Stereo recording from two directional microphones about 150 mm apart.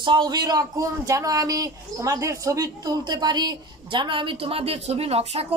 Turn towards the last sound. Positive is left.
turn(degrees=-45)  # may be behind; listen again after turning